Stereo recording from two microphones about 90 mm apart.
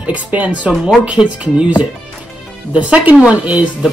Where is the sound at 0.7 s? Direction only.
Centre (ahead or behind).